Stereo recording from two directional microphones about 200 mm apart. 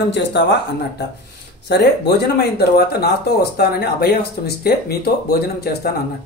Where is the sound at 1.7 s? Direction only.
55° left (ahead or behind).